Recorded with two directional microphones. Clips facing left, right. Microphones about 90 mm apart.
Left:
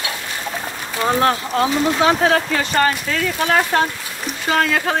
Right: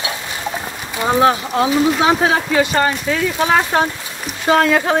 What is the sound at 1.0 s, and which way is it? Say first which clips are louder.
Speech: right 3 dB; 15° right (ahead or behind).